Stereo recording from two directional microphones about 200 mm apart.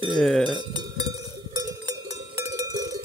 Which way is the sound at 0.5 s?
20° right (ahead or behind).